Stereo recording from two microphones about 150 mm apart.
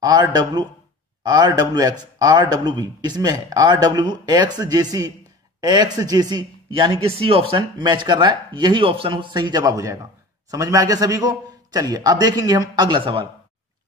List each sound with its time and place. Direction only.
0.0 s a man's voice: 25° right (ahead or behind)